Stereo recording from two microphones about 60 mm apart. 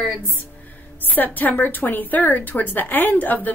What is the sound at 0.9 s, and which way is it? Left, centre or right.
A woman's voice, left.